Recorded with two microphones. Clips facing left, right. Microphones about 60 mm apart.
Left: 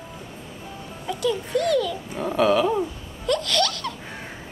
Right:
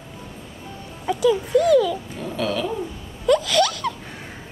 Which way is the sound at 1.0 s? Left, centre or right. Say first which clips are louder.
Right 6 dB; centre.